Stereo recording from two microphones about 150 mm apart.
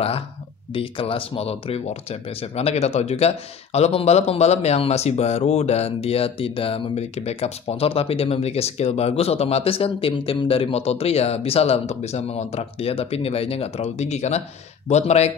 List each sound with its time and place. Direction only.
0.7 s speech: 35° left (ahead or behind)